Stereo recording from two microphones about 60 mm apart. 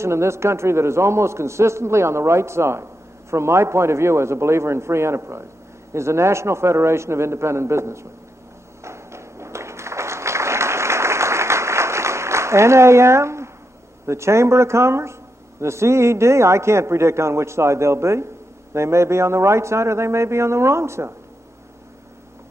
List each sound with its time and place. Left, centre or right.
0.0 s a man's voice: right
8.8 s applause: right
14.0 s a man's voice: right